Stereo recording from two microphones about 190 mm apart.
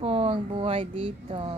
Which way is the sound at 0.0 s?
30° right (ahead or behind).